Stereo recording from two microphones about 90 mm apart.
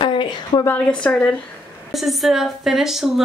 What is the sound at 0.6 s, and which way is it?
Speech, 15° left (ahead or behind).